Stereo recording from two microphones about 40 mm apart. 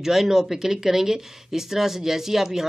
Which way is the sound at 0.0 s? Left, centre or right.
Centre.